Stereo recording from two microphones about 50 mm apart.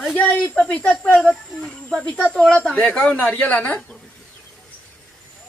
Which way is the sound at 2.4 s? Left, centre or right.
Left.